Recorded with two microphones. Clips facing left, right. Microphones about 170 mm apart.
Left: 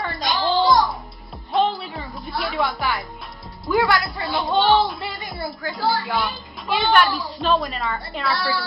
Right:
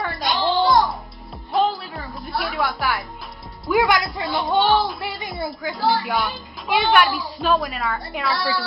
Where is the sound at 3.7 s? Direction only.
15° right (ahead or behind).